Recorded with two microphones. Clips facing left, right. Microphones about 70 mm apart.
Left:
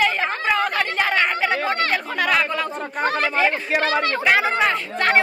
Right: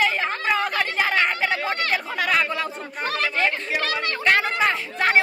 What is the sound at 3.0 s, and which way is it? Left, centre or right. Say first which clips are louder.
Speech: left 4 dB; left.